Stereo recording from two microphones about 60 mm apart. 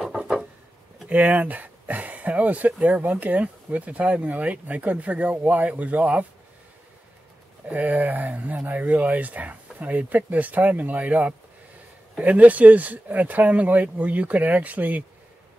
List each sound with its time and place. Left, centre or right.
0.0 s a sound: centre
1.0 s speech: right
7.6 s speech: right